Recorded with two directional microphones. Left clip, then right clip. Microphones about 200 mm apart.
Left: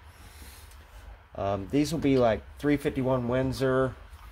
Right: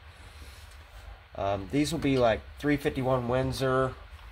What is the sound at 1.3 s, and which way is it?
Speech, 30° left (ahead or behind).